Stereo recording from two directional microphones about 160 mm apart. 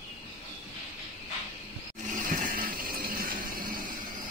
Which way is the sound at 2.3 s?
55° right (ahead or behind).